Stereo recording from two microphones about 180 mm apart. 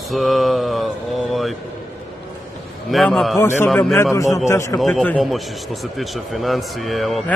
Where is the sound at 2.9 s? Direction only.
Centre (ahead or behind).